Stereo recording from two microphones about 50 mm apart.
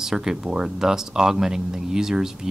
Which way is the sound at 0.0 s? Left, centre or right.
Centre.